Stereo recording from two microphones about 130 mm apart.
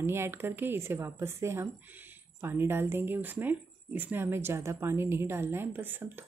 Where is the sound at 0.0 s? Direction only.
20° right (ahead or behind).